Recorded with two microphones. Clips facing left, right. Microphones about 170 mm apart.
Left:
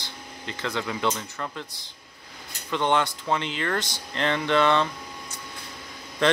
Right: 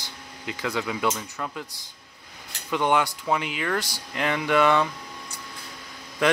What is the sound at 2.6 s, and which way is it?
Speech, 10° right (ahead or behind).